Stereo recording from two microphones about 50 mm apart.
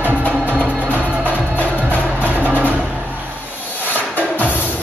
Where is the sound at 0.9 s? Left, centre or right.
Left.